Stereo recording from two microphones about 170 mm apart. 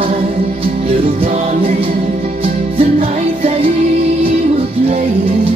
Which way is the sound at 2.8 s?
35° right (ahead or behind).